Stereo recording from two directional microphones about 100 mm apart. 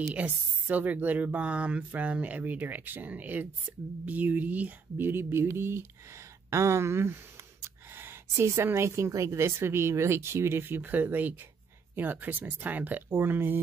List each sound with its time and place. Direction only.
0.1 s speech: 15° right (ahead or behind)